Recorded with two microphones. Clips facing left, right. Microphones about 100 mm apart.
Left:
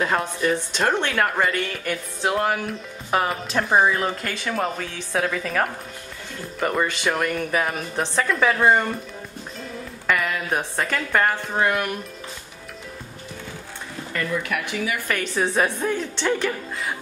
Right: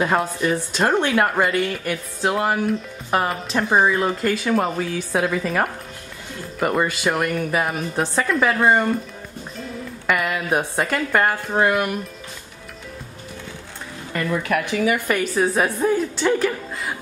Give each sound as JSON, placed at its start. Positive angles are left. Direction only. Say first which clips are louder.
{"t": 0.0, "sound": "a woman's voice", "louder": "right 2 dB", "side_deg": -10}
{"t": 10.0, "sound": "a woman's voice", "louder": "right 2 dB", "side_deg": -10}
{"t": 14.3, "sound": "speech", "louder": "right 6 dB", "side_deg": -35}
{"t": 15.3, "sound": "a woman's voice", "louder": "left 1 dB", "side_deg": -5}